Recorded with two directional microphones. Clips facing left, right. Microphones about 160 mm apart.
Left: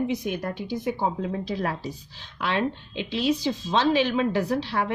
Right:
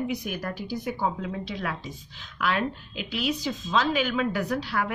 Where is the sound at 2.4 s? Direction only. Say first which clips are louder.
Left 1 dB; 25° left (ahead or behind).